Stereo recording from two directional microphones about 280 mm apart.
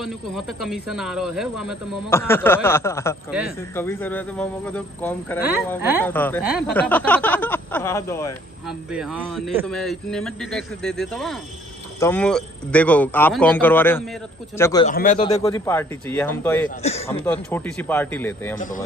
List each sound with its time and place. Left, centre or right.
0.0 s speech: centre
8.6 s speech: centre
14.9 s a man's voice: left; by 16.6 s centre
16.8 s a man's voice: left
17.1 s speech: centre